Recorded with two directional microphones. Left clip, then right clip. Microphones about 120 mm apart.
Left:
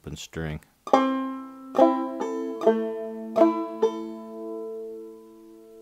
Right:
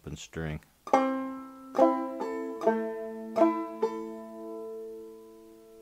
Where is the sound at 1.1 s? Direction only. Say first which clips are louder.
Left 5 dB; 30° left (ahead or behind).